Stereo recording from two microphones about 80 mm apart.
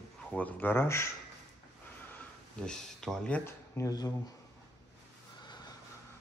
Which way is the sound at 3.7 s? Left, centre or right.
Left.